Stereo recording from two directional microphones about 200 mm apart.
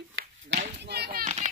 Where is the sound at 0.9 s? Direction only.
50° right (ahead or behind).